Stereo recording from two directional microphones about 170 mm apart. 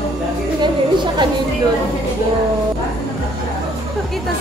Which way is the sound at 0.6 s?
25° right (ahead or behind).